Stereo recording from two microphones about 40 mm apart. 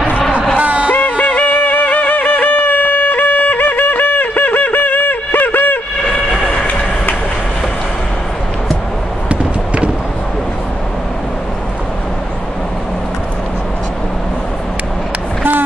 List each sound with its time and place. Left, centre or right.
0.6 s music: right
0.9 s yodeling: left
1.5 s music: left
6.6 s train: left
9.3 s a sound: right